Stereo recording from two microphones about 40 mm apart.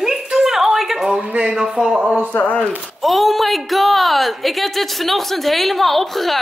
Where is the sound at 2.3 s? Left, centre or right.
Left.